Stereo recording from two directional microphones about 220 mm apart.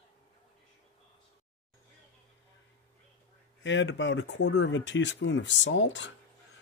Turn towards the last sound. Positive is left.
turn(degrees=55)  # may be behind; listen again after turning